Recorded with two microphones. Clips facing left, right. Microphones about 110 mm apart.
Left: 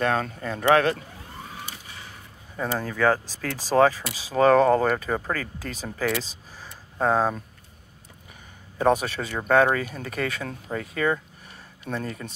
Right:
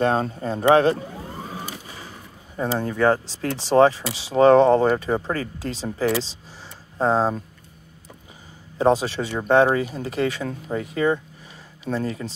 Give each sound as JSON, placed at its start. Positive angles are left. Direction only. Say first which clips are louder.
{"t": 0.0, "sound": "speech", "louder": "right 4 dB", "side_deg": -30}
{"t": 8.7, "sound": "speech", "louder": "right 3 dB", "side_deg": -25}